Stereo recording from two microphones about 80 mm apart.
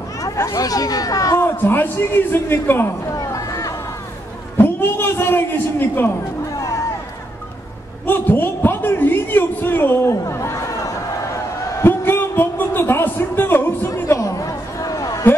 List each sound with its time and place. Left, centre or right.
0.4 s speech: left
1.6 s a man's voice: left
3.1 s chatter: left
4.6 s a man's voice: left
6.5 s a sound: left
8.1 s a man's voice: left
10.2 s chatter: left
11.8 s a sound: left